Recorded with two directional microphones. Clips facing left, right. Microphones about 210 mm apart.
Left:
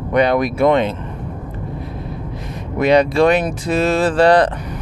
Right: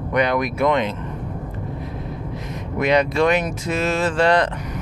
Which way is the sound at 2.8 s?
30° left (ahead or behind).